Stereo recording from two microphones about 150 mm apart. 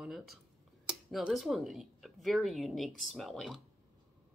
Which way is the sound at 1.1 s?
Centre (ahead or behind).